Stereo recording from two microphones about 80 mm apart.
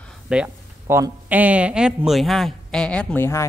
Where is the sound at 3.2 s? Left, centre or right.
Left.